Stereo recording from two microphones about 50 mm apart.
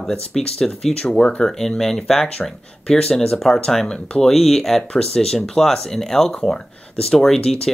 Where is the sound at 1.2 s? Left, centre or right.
Centre.